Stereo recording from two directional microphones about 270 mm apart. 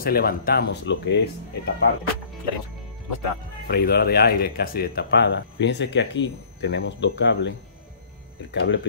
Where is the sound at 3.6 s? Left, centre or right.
Left.